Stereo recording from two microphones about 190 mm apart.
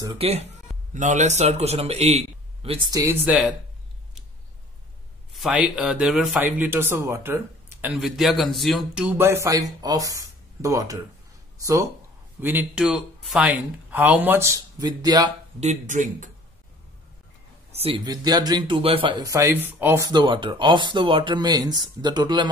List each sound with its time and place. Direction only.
0.0 s a man's voice: 30° right (ahead or behind)
2.9 s speech: 15° right (ahead or behind)
5.3 s speech: 5° right (ahead or behind)
7.8 s speech: 5° right (ahead or behind); by 15.3 s 20° right (ahead or behind)
15.6 s a man's voice: 40° right (ahead or behind)
17.6 s speech: 30° right (ahead or behind)